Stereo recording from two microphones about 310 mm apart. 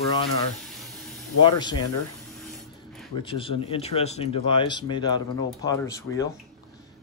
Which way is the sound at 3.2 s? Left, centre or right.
Centre.